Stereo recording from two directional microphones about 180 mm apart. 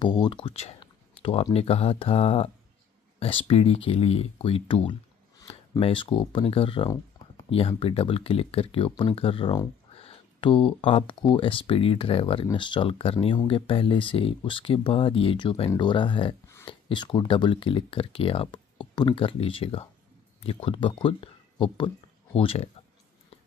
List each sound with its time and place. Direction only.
0.0 s speech: 25° left (ahead or behind)